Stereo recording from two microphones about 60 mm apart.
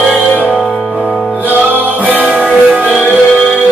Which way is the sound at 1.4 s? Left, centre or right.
Right.